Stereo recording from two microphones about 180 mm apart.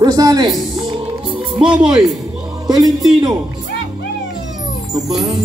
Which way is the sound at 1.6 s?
5° right (ahead or behind).